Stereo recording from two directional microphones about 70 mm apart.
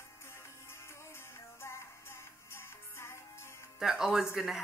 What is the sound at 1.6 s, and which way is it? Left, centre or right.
Music, left.